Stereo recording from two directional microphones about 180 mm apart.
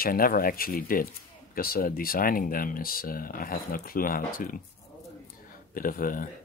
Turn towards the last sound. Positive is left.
turn(degrees=50)  # may be behind; listen again after turning